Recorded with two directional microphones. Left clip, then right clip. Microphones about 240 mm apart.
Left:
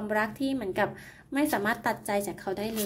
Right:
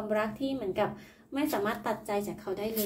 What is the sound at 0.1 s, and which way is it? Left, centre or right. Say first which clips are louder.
A woman's voice: left 3 dB; left.